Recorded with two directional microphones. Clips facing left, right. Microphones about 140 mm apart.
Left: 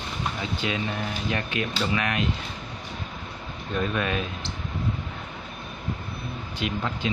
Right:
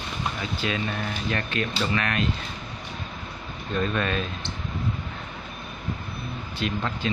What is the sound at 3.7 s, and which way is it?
Speech, 10° left (ahead or behind).